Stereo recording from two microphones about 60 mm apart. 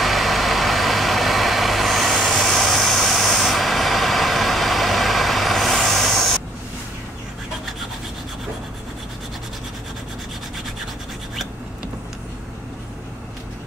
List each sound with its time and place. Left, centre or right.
0.0 s vehicle: centre